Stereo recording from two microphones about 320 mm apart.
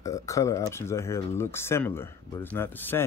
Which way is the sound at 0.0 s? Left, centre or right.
Centre.